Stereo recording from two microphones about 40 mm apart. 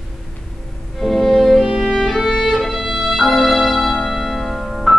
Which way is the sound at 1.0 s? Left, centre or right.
Centre.